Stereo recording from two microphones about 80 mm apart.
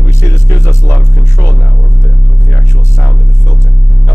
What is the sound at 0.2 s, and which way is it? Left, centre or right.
Music, left.